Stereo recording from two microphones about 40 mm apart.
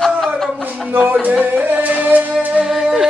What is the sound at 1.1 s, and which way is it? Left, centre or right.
Speech, right.